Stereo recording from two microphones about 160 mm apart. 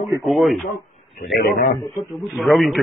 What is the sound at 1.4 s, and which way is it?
Speech, 75° left (ahead or behind).